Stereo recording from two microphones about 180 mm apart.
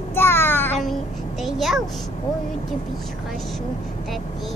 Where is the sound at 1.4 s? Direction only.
Centre (ahead or behind).